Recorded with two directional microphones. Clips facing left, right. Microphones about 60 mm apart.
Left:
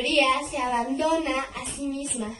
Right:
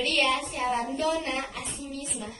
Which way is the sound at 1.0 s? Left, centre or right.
Centre.